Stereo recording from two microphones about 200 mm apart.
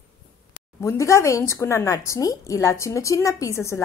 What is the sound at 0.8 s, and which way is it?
Speech, 15° left (ahead or behind).